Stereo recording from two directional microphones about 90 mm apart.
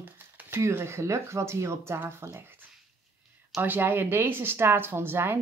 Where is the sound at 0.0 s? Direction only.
25° right (ahead or behind).